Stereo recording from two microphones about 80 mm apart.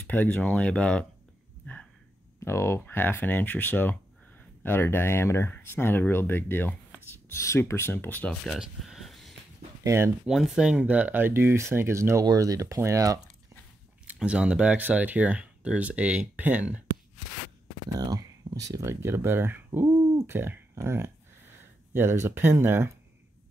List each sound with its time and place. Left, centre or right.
0.0 s speech: left
2.4 s speech: left
8.5 s a sound: centre
9.8 s speech: right
10.2 s speech: centre
10.8 s speech: centre; by 13.2 s right
14.1 s speech: centre
17.9 s speech: right
18.9 s speech: right